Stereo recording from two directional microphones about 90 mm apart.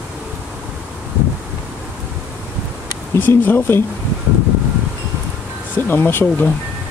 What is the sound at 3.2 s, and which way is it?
Speech, 25° left (ahead or behind).